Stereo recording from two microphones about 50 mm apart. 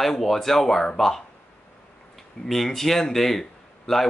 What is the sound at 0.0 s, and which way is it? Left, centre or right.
Speech, centre.